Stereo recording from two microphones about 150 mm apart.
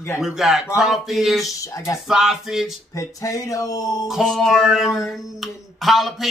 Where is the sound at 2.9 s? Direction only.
20° left (ahead or behind).